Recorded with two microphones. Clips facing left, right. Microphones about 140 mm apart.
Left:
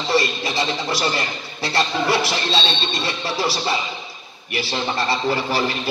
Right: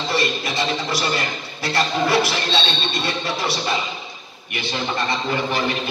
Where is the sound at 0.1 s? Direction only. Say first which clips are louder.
Left 3 dB; 25° left (ahead or behind).